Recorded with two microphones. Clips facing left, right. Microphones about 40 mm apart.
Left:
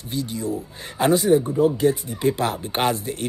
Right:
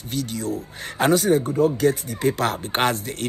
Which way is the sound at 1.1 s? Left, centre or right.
Right.